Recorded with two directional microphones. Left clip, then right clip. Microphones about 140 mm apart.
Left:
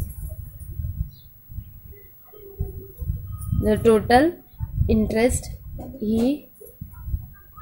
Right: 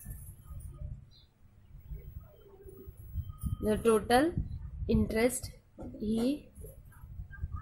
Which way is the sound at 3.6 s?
15° left (ahead or behind).